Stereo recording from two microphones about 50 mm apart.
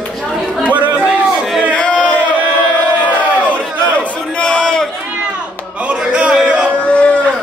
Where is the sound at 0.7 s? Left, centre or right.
Right.